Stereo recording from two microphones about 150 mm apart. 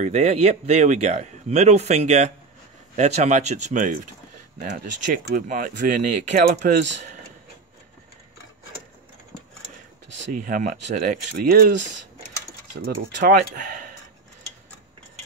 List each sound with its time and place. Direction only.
0.0 s speech: 45° right (ahead or behind); by 6.8 s 65° right (ahead or behind)
10.3 s speech: 65° right (ahead or behind)
12.8 s speech: 80° right